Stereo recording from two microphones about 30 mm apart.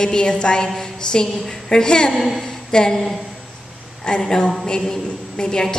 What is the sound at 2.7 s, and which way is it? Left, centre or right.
Speech, centre.